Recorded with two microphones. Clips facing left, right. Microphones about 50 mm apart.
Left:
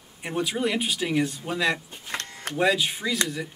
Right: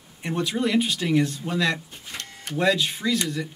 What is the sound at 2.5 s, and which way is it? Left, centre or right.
Speech, centre.